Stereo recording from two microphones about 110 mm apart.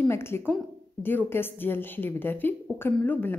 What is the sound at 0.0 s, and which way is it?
A woman's voice, 20° left (ahead or behind).